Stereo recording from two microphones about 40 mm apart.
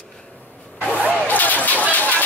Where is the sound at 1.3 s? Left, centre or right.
Left.